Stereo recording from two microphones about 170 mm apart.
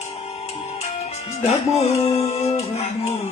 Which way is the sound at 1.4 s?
40° left (ahead or behind).